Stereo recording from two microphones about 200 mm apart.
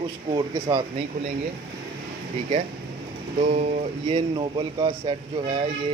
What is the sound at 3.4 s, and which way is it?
Speech, 35° right (ahead or behind).